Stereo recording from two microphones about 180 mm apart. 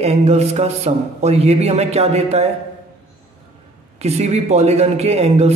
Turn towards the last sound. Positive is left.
turn(degrees=-35)  # may be behind; listen again after turning